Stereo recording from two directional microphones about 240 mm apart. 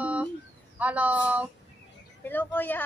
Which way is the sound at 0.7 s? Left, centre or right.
Centre.